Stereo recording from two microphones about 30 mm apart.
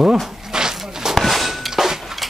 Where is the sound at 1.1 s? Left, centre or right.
Centre.